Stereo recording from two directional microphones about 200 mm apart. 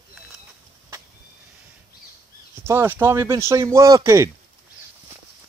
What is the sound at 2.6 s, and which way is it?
Speech, 10° right (ahead or behind).